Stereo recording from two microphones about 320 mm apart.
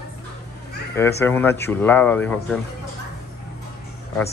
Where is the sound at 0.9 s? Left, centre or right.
Centre.